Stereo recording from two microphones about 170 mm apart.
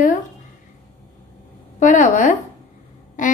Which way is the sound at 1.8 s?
50° left (ahead or behind).